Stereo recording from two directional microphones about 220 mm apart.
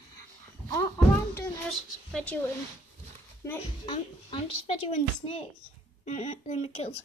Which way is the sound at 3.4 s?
15° left (ahead or behind).